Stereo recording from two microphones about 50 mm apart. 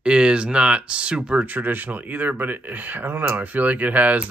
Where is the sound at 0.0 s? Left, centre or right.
Right.